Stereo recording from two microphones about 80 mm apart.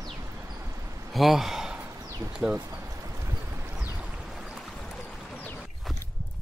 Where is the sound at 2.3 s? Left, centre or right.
Centre.